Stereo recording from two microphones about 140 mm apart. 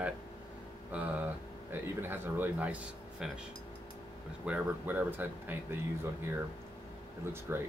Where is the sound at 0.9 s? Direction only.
10° right (ahead or behind).